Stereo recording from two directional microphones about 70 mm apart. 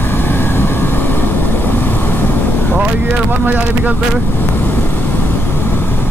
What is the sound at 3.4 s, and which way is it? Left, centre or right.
Speech, right.